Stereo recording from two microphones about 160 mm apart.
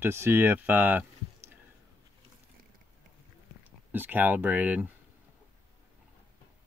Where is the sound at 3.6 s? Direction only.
10° right (ahead or behind).